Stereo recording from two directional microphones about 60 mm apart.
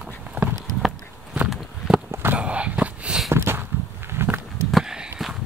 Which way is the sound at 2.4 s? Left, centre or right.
Centre.